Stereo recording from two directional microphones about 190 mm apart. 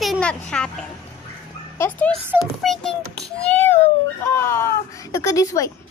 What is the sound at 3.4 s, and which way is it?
Baby cry, 10° left (ahead or behind).